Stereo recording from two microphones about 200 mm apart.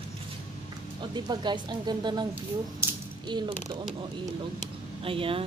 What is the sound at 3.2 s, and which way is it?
Speech, 25° right (ahead or behind).